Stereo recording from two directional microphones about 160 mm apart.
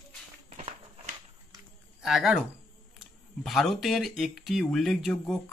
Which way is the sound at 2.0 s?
5° right (ahead or behind).